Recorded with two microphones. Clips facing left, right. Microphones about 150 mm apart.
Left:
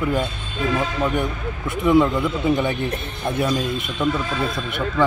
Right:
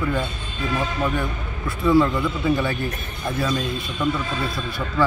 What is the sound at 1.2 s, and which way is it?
Speech, 20° left (ahead or behind).